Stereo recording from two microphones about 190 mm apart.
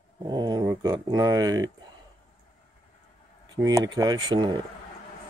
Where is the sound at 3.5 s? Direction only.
20° right (ahead or behind).